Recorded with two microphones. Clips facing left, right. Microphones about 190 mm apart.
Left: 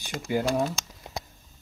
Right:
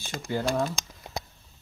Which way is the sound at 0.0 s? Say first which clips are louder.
Left 2 dB; 15° left (ahead or behind).